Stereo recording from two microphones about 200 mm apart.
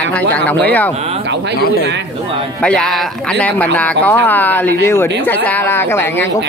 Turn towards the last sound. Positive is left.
turn(degrees=10)  # may be behind; listen again after turning